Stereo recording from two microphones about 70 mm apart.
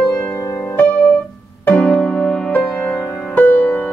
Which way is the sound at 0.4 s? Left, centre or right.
Left.